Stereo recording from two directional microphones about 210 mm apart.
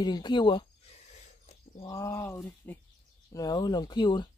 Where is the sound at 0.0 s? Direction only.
20° left (ahead or behind).